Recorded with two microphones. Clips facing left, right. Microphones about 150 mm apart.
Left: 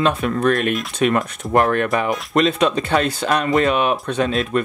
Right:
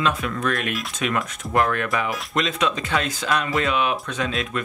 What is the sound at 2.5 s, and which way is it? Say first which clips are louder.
Speech: left 6 dB; 60° left (ahead or behind).